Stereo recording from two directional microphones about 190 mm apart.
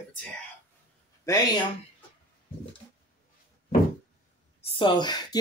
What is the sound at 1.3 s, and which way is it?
Speech, 15° left (ahead or behind).